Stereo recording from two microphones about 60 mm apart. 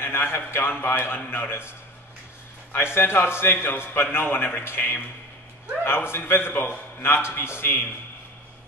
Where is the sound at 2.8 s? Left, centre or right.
Left.